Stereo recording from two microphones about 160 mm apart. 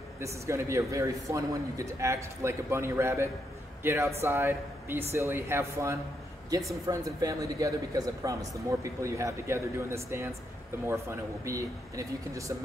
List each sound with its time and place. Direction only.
0.2 s a man's voice: 20° right (ahead or behind)